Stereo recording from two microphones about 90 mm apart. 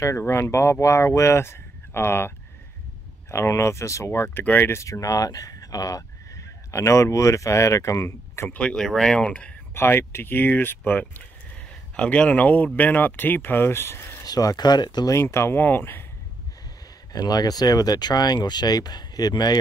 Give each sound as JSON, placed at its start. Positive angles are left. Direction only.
{"t": 0.3, "sound": "speech", "side_deg": 30}
{"t": 4.8, "sound": "speech", "side_deg": 40}
{"t": 8.5, "sound": "speech", "side_deg": 10}
{"t": 9.8, "sound": "speech", "side_deg": 25}
{"t": 14.2, "sound": "speech", "side_deg": 45}
{"t": 15.0, "sound": "speech", "side_deg": 30}
{"t": 17.1, "sound": "speech", "side_deg": 45}